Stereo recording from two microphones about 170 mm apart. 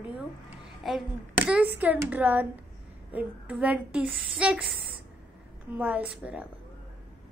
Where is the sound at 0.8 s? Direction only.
5° right (ahead or behind).